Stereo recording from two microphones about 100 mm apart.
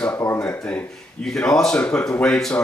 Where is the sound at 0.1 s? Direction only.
25° left (ahead or behind).